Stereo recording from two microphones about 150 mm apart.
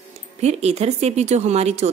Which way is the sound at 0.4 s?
45° right (ahead or behind).